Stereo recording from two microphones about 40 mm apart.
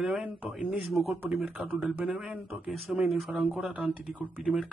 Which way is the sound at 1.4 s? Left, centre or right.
Right.